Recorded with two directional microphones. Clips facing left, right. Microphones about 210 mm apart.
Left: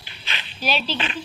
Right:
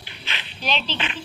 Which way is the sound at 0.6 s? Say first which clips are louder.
Left 2 dB; 10° left (ahead or behind).